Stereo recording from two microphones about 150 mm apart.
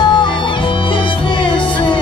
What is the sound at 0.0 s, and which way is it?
Music, 30° left (ahead or behind).